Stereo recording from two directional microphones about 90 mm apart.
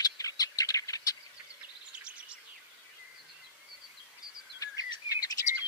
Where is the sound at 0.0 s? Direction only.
45° left (ahead or behind).